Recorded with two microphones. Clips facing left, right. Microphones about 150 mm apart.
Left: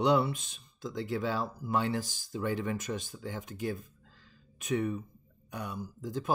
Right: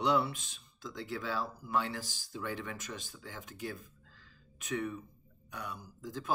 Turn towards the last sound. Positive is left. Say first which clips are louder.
# left 6 dB
turn(degrees=20)  # may be behind; listen again after turning